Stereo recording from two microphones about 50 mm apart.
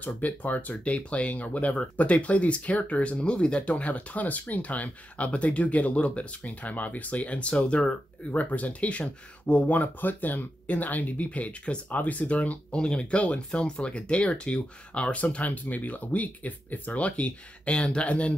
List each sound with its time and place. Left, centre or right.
0.0 s speech: left